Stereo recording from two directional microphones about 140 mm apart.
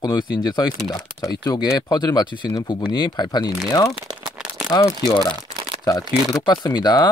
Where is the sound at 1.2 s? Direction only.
25° left (ahead or behind).